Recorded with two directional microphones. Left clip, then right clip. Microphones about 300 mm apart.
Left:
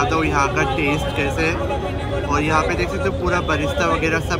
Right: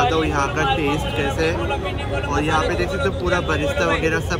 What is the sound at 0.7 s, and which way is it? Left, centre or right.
Speech, right.